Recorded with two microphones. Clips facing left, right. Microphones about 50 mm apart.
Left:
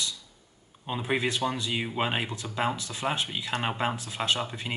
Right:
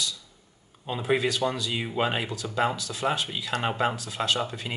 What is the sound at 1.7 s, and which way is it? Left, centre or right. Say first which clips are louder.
Speech: right 2 dB; centre.